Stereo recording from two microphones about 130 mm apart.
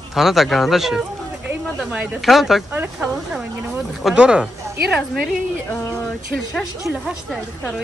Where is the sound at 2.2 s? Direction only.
Centre (ahead or behind).